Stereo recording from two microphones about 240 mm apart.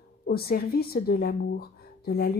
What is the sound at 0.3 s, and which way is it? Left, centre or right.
Speech, left.